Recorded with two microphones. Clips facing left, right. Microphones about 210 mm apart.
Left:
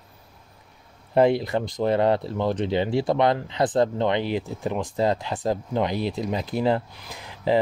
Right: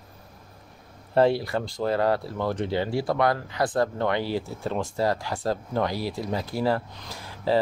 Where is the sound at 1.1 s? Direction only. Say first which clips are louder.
Left 2 dB; 20° left (ahead or behind).